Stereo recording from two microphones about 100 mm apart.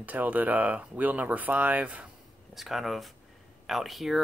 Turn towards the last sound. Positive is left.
turn(degrees=0)  # may be behind; listen again after turning